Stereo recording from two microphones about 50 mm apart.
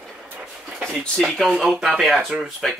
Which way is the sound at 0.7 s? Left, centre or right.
Centre.